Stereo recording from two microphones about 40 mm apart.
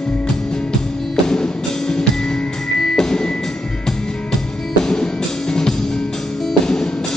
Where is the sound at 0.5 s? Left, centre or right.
Centre.